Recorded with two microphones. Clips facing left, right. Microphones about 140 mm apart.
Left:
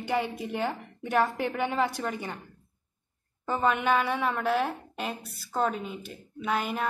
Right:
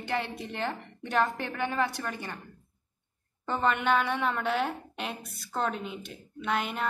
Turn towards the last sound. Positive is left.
turn(degrees=0)  # may be behind; listen again after turning